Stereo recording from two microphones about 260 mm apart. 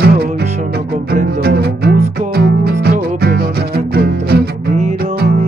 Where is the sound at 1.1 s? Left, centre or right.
Right.